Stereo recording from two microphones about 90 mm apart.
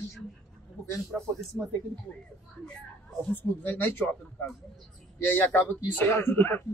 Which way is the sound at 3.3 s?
20° left (ahead or behind).